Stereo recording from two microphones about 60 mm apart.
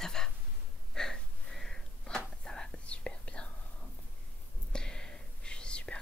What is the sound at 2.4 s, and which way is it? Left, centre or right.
Whispering, centre.